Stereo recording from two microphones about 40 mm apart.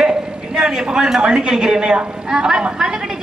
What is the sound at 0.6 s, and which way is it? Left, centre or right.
A man's voice, centre.